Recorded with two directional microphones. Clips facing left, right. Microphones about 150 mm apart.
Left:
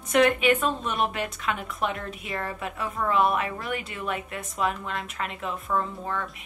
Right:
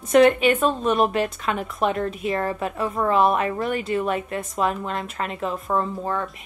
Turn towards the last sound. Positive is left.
turn(degrees=-35)  # may be behind; listen again after turning